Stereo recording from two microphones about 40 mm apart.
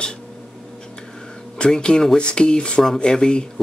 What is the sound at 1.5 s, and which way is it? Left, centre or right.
Speech, left.